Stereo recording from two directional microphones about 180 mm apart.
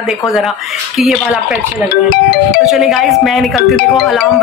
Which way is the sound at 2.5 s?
5° right (ahead or behind).